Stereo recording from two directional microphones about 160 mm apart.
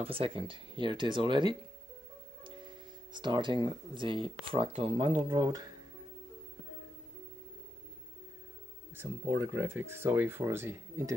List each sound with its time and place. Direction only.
0.0 s speech: 35° right (ahead or behind)
5.1 s speech: 25° right (ahead or behind)
8.9 s speech: 15° right (ahead or behind)